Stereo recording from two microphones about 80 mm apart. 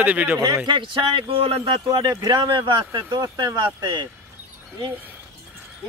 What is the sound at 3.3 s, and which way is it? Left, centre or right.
Speech, right.